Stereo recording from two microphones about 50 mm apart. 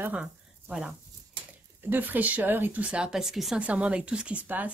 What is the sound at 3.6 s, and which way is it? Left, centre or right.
Speech, right.